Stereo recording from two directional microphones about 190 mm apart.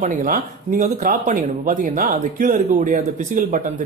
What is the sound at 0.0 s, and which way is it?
Speech, 45° right (ahead or behind).